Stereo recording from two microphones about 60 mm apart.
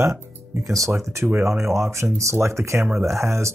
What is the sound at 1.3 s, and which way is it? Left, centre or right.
Speech, right.